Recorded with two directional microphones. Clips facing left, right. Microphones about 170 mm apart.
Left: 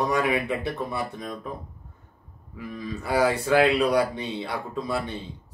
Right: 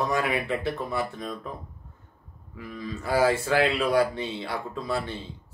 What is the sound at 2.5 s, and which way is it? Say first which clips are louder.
Speech: left 2 dB; 20° left (ahead or behind).